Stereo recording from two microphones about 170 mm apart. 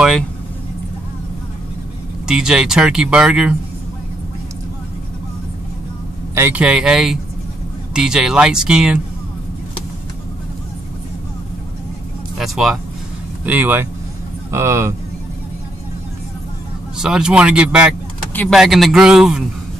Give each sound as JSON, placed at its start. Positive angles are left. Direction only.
{"t": 2.2, "sound": "speech", "side_deg": -5}
{"t": 6.3, "sound": "speech", "side_deg": -10}
{"t": 12.4, "sound": "speech", "side_deg": 0}
{"t": 17.0, "sound": "speech", "side_deg": -5}